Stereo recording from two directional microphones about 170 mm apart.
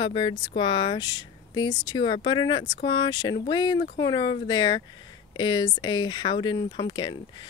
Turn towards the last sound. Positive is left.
turn(degrees=25)  # may be behind; listen again after turning